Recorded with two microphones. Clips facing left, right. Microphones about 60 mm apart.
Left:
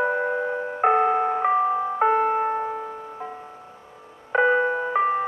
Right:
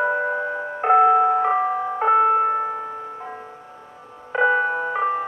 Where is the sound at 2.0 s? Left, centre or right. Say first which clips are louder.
Right 2 dB; centre.